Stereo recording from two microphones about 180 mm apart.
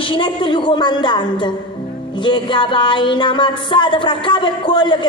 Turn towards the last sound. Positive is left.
turn(degrees=25)  # may be behind; listen again after turning